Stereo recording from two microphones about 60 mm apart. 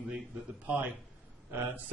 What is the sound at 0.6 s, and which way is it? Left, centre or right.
Speech, right.